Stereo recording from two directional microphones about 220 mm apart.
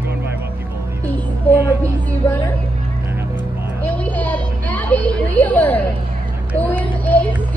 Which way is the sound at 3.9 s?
5° left (ahead or behind).